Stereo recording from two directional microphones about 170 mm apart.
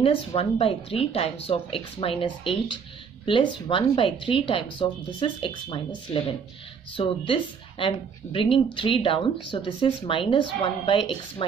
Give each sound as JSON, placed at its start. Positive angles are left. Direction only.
{"t": 0.0, "sound": "speech", "side_deg": 35}
{"t": 7.0, "sound": "speech", "side_deg": 30}